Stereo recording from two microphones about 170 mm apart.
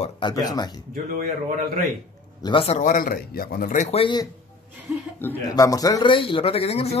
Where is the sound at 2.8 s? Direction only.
50° left (ahead or behind); by 4.2 s 30° left (ahead or behind).